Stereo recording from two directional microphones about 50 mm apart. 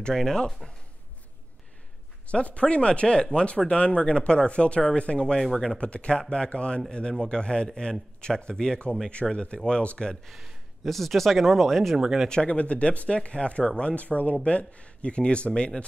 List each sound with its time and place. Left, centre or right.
0.0 s a man's voice: centre
2.2 s speech: left
5.4 s a man's voice: centre
5.8 s a man's voice: left
10.2 s a sound: centre
10.9 s speech: centre
12.0 s speech: centre
12.3 s speech: left